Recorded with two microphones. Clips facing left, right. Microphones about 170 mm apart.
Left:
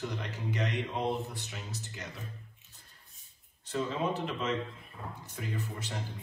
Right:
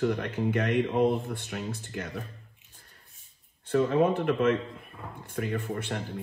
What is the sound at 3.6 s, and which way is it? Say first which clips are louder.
Speech: right 9 dB; 55° right (ahead or behind).